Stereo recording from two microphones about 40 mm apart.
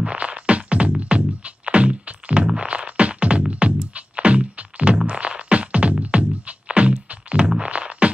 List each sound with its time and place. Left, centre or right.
0.0 s music: right
7.4 s music: centre
7.7 s music: right